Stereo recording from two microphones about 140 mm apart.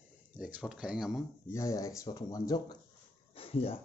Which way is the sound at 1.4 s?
20° left (ahead or behind).